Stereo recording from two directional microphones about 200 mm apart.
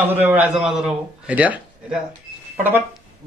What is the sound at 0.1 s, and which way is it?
A man's voice, 10° right (ahead or behind).